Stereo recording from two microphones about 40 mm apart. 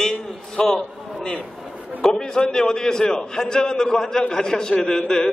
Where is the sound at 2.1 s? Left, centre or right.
Centre.